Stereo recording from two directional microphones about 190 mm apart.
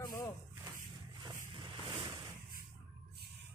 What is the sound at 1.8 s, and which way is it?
Ocean, 25° right (ahead or behind).